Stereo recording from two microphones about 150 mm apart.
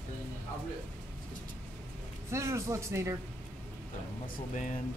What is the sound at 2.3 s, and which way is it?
Speech, 20° right (ahead or behind).